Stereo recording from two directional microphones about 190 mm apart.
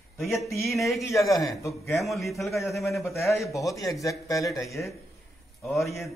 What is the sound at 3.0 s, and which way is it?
Speech, 15° left (ahead or behind).